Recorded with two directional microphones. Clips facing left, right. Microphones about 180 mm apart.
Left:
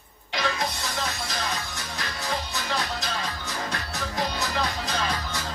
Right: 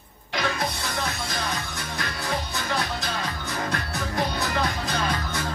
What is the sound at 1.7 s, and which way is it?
Music, 55° right (ahead or behind).